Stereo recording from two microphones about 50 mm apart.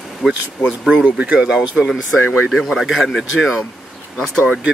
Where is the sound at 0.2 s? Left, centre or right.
Centre.